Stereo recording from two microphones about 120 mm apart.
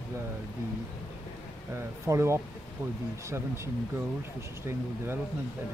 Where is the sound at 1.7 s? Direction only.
25° right (ahead or behind).